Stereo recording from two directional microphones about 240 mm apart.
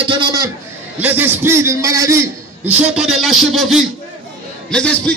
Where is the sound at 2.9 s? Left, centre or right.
Centre.